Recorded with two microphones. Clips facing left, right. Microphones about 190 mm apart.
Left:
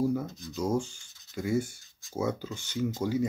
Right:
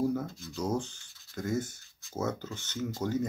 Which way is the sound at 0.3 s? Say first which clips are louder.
Left 3 dB; 20° left (ahead or behind).